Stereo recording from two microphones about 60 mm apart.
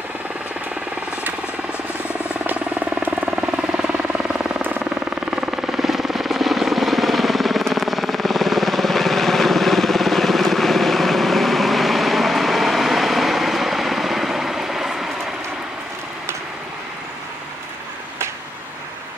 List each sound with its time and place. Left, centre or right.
1.7 s helicopter: centre
2.4 s vehicle: right
3.3 s helicopter: centre
4.6 s vehicle: right
5.3 s helicopter: centre